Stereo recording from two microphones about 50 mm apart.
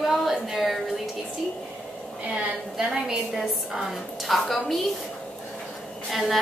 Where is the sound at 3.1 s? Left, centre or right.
Centre.